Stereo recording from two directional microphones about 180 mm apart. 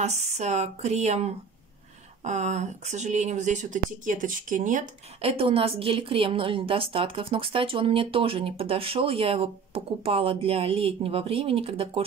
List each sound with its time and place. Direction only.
0.0 s a woman's voice: 40° right (ahead or behind)
5.3 s a woman's voice: 30° right (ahead or behind)